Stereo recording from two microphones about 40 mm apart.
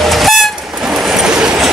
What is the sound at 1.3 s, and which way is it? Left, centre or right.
Train, centre.